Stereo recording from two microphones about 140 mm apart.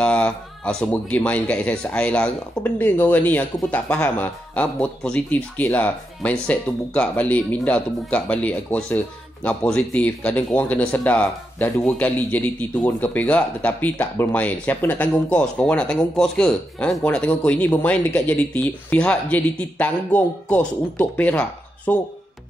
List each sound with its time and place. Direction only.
0.0 s speech: 5° left (ahead or behind)